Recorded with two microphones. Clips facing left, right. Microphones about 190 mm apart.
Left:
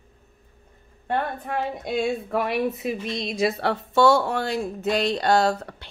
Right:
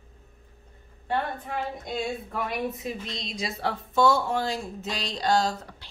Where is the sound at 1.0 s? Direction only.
60° left (ahead or behind).